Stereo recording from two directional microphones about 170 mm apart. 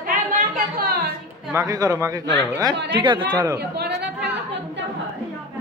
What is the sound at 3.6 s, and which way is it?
Chatter, 75° right (ahead or behind).